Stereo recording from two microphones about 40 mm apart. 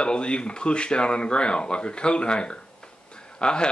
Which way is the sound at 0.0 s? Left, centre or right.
Left.